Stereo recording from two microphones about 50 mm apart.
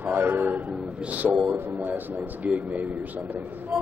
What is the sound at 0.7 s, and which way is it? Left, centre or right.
Speech, right.